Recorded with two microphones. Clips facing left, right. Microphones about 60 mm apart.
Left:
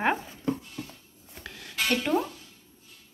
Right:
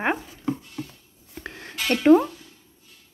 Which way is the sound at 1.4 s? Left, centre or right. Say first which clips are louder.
Right 1 dB; right.